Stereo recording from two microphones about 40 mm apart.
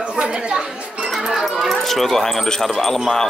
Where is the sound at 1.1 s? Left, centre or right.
Centre.